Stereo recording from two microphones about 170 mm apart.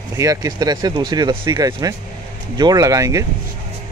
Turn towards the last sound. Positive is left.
turn(degrees=-20)  # may be behind; listen again after turning